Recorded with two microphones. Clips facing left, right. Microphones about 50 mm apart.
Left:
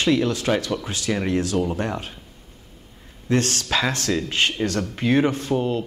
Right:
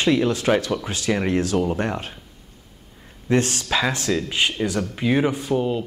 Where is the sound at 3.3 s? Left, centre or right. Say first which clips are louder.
Right 1 dB; right.